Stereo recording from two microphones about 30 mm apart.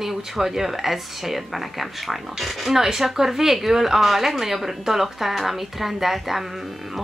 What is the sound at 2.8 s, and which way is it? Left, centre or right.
A woman's voice, centre.